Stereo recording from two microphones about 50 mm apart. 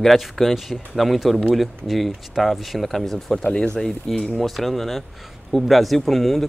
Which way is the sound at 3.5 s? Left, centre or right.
Centre.